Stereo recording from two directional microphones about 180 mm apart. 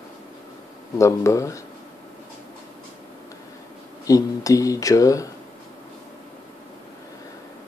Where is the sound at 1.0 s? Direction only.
15° left (ahead or behind).